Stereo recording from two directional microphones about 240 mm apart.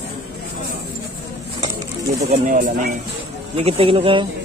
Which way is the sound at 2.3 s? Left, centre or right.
Right.